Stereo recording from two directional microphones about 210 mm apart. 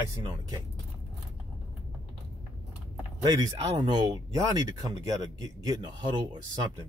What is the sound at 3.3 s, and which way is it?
Speech, 15° right (ahead or behind).